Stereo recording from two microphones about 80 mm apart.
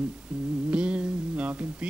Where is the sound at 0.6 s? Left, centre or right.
Centre.